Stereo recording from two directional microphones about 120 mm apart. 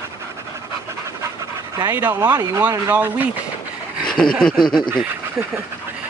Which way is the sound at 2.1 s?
30° right (ahead or behind).